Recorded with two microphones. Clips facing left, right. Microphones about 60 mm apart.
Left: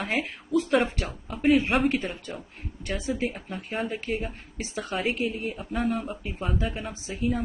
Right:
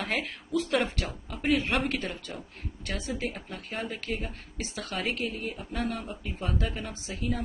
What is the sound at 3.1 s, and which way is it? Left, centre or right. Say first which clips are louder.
Speech: left 5 dB; centre.